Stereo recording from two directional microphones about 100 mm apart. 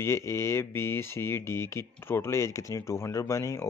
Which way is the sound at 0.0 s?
25° left (ahead or behind).